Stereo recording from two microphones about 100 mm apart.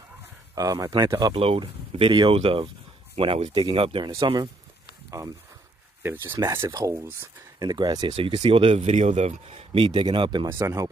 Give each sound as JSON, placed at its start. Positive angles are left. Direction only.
{"t": 0.6, "sound": "speech", "side_deg": -35}
{"t": 1.3, "sound": "speech", "side_deg": -75}
{"t": 1.9, "sound": "speech", "side_deg": -60}
{"t": 4.2, "sound": "speech", "side_deg": -50}
{"t": 6.4, "sound": "speech", "side_deg": -30}
{"t": 7.5, "sound": "speech", "side_deg": -40}
{"t": 8.1, "sound": "speech", "side_deg": -75}
{"t": 9.8, "sound": "speech", "side_deg": -55}
{"t": 10.5, "sound": "speech", "side_deg": -30}